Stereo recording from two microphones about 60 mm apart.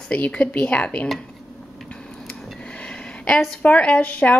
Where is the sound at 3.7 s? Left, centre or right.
Centre.